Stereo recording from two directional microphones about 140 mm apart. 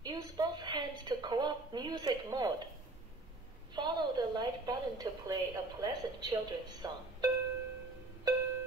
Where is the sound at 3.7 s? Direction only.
30° right (ahead or behind).